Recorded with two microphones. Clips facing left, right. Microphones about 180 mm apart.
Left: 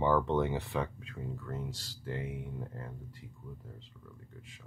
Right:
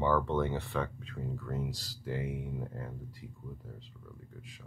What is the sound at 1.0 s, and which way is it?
Speech, centre (ahead or behind).